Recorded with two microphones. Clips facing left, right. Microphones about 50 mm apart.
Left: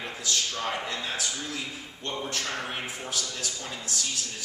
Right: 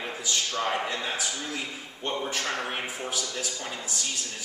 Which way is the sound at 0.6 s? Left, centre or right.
Centre.